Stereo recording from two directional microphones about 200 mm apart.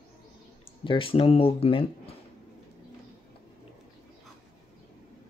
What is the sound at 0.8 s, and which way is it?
Speech, 25° left (ahead or behind).